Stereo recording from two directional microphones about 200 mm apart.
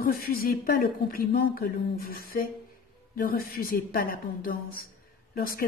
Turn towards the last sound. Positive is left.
turn(degrees=45)  # may be behind; listen again after turning